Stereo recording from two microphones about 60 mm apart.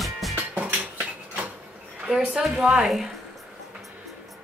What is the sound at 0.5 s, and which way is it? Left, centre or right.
Music, right.